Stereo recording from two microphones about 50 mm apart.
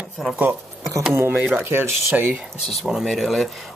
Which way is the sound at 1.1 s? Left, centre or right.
Right.